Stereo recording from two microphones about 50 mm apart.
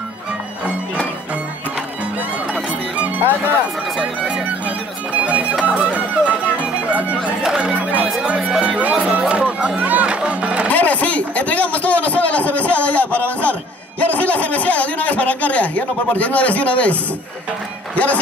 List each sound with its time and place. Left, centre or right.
3.0 s music: right
4.0 s music: right
10.7 s a sound: left
17.9 s speech: left